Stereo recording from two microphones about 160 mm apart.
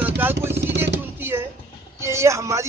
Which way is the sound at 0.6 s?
90° right.